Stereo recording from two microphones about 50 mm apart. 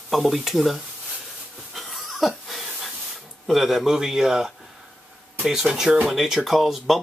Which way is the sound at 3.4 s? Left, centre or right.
Centre.